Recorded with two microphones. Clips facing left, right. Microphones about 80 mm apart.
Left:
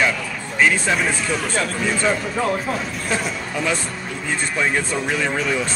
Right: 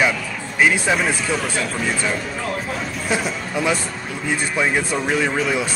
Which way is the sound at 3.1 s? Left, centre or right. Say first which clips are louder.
Right 2 dB; centre.